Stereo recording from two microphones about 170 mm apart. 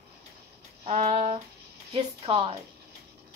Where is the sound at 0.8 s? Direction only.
40° right (ahead or behind).